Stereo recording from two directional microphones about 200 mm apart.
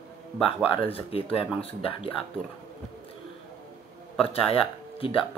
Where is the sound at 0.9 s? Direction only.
30° left (ahead or behind).